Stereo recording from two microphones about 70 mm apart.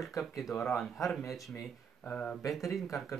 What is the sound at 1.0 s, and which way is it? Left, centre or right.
Speech, left.